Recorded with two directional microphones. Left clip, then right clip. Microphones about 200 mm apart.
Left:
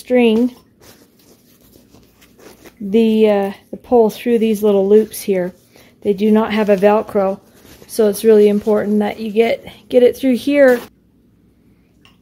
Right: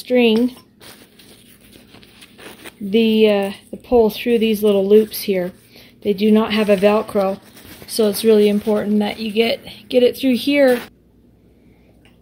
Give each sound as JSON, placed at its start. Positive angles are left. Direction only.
{"t": 0.1, "sound": "speech", "side_deg": 15}
{"t": 2.1, "sound": "a sound", "side_deg": 5}
{"t": 2.9, "sound": "a woman's voice", "side_deg": 15}